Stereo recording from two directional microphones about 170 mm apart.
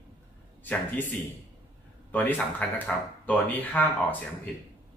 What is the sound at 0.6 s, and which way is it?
Speech, 10° left (ahead or behind).